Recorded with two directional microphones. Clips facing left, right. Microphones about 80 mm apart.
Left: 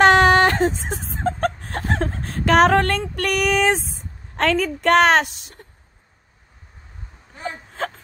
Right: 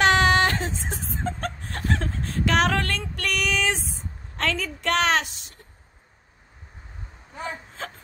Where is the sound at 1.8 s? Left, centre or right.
Left.